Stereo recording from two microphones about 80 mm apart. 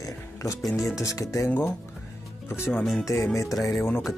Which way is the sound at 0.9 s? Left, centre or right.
Left.